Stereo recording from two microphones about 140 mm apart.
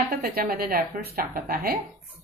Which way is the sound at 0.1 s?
90° right.